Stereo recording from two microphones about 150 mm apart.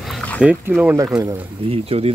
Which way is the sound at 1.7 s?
40° right (ahead or behind).